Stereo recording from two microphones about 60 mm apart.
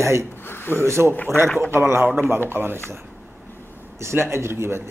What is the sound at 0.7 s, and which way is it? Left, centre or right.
Speech, right.